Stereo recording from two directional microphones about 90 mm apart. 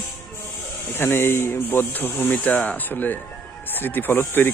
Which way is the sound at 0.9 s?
25° left (ahead or behind).